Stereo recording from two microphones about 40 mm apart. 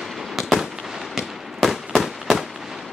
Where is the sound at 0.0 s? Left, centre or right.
Centre.